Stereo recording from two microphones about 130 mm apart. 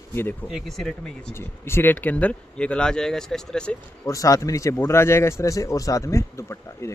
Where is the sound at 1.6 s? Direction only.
15° left (ahead or behind).